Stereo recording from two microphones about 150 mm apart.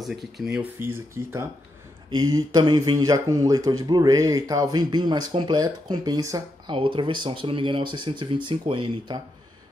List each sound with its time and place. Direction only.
0.0 s speech: centre (ahead or behind)
0.7 s speech: 15° right (ahead or behind); by 9.2 s 30° right (ahead or behind)